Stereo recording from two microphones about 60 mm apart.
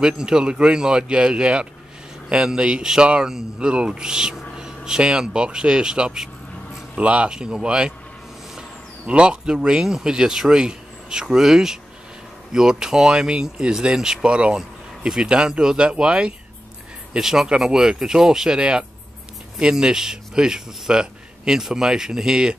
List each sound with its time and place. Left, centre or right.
0.0 s speech: centre
7.0 s speech: centre